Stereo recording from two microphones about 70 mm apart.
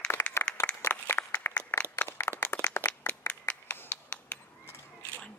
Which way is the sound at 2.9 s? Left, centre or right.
Centre.